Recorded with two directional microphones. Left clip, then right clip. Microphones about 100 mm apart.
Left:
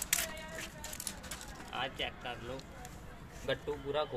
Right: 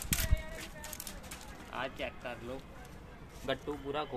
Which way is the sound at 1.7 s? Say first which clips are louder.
Left 1 dB; 50° right (ahead or behind).